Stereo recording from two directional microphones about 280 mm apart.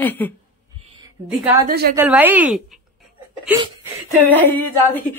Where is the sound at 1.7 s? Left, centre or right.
Right.